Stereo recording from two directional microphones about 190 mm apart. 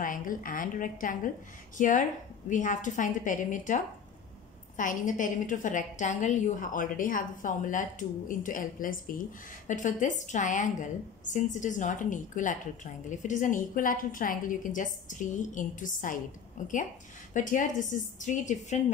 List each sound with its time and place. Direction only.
0.0 s a woman's voice: 45° left (ahead or behind)